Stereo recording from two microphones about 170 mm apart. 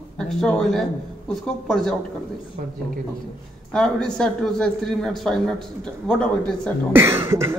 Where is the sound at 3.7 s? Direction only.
5° left (ahead or behind).